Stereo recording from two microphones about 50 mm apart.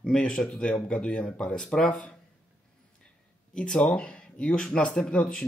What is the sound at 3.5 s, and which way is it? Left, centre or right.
Speech, centre.